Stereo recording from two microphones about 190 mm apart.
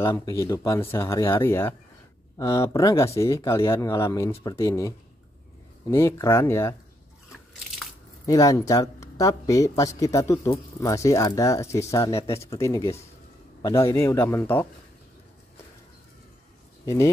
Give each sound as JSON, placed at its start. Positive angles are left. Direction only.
{"t": 0.0, "sound": "speech", "side_deg": 15}
{"t": 8.3, "sound": "speech", "side_deg": 15}
{"t": 16.8, "sound": "speech", "side_deg": 15}